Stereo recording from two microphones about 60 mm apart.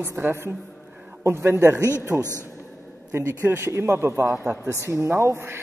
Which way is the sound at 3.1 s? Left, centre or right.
Right.